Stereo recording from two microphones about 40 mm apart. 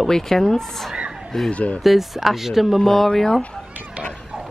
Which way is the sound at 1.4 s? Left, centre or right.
Left.